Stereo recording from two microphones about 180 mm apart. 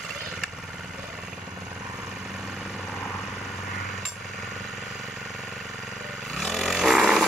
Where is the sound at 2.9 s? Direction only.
15° left (ahead or behind).